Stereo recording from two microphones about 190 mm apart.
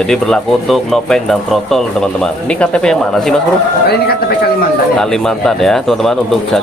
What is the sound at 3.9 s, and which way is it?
Speech, 55° left (ahead or behind).